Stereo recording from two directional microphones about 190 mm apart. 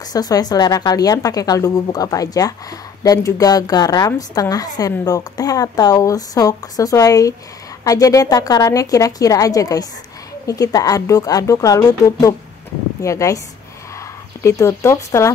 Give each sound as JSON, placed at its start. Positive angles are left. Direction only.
{"t": 0.1, "sound": "a woman's voice", "side_deg": 20}
{"t": 14.4, "sound": "a woman's voice", "side_deg": 15}